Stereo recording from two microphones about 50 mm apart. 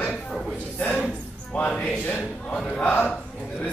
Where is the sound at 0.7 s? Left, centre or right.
Left.